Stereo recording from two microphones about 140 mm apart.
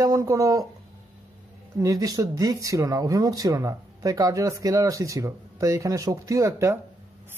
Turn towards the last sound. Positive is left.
turn(degrees=-20)  # may be behind; listen again after turning